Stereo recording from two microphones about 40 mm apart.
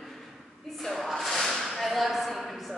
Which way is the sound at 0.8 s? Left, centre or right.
Centre.